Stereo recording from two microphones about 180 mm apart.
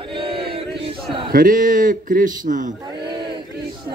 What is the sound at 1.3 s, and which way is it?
A man's voice, 50° right (ahead or behind).